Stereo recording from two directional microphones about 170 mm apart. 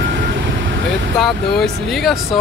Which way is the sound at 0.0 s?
75° right (ahead or behind).